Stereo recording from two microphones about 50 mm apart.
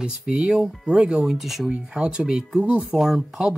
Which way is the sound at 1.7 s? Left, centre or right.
Centre.